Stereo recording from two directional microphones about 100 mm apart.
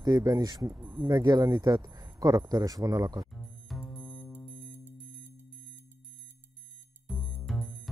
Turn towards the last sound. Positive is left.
turn(degrees=0)  # may be behind; listen again after turning